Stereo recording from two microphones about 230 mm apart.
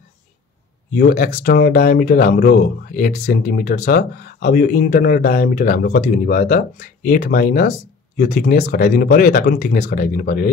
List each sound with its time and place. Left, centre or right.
0.9 s speech: left